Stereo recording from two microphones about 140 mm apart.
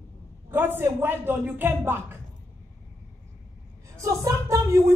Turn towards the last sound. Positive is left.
turn(degrees=-25)  # may be behind; listen again after turning